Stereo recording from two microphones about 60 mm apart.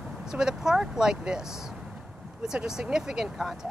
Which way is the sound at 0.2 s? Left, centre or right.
Centre.